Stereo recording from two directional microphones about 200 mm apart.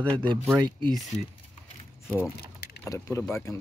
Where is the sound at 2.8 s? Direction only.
15° left (ahead or behind).